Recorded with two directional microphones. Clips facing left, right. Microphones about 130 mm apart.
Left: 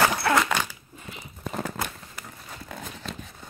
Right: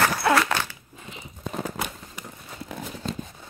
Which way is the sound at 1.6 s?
20° right (ahead or behind).